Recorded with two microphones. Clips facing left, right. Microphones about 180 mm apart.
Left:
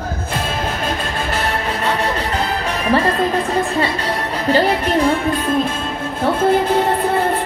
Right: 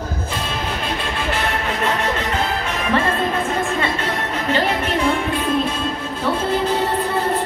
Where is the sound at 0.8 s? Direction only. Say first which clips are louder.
Left 2 dB; 45° left (ahead or behind).